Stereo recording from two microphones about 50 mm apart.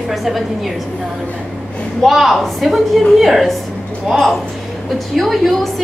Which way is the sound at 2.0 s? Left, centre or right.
Centre.